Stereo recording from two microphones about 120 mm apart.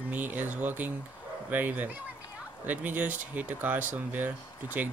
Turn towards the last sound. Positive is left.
turn(degrees=-15)  # may be behind; listen again after turning